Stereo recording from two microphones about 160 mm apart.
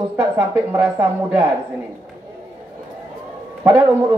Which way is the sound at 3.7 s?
10° right (ahead or behind).